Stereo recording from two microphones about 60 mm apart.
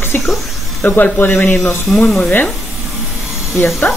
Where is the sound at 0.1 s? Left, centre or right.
Left.